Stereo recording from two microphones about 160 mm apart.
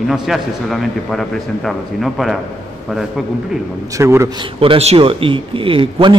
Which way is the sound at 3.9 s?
15° right (ahead or behind).